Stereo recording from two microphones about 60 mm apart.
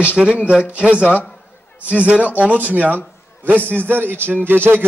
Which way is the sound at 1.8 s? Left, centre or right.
Right.